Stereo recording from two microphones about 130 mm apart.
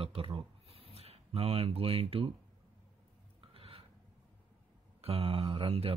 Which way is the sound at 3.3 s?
45° right (ahead or behind).